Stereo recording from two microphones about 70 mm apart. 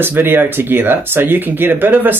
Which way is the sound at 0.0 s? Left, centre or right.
Right.